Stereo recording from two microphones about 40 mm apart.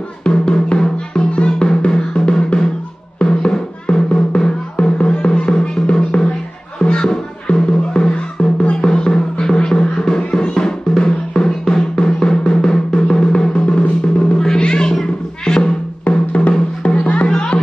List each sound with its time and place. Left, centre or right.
0.2 s drum: left
3.2 s music: left
10.5 s drum: centre
14.6 s music: left
16.3 s music: left
17.3 s music: left